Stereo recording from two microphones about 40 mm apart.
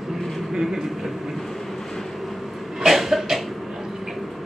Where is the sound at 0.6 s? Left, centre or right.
Centre.